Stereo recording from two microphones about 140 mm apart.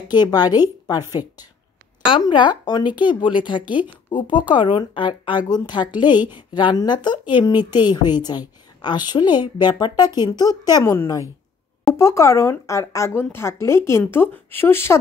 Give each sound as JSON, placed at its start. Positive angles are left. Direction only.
{"t": 0.1, "sound": "speech", "side_deg": 30}
{"t": 2.0, "sound": "a woman's voice", "side_deg": 35}